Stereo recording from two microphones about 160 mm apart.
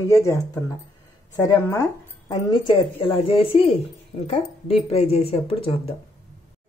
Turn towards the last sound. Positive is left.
turn(degrees=35)  # may be behind; listen again after turning